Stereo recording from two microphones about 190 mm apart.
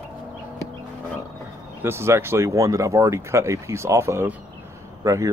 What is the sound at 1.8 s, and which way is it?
Speech, 15° right (ahead or behind).